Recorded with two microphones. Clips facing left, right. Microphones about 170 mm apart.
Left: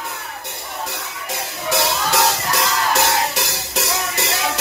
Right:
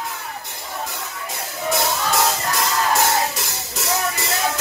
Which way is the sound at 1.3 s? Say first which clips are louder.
Left 2 dB; 75° left (ahead or behind).